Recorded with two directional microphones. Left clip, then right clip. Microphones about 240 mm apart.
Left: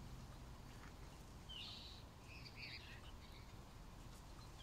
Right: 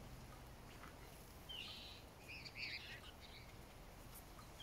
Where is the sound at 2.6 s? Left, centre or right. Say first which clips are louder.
Right 6 dB; right.